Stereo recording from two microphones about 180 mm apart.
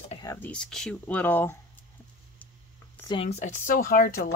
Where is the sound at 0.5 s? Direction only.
5° left (ahead or behind).